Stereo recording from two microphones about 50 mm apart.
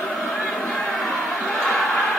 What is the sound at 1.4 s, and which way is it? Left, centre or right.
Crowd, centre.